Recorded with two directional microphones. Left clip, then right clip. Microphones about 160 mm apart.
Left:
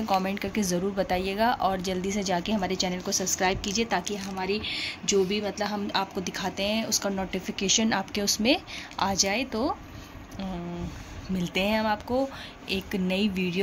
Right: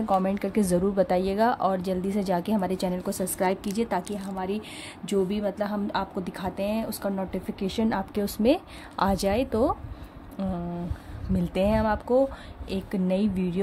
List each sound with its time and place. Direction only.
0.0 s a woman's voice: 25° right (ahead or behind)
8.9 s a woman's voice: 45° right (ahead or behind)
11.3 s speech: 30° right (ahead or behind)